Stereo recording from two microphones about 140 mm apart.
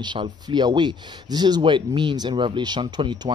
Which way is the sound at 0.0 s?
35° right (ahead or behind).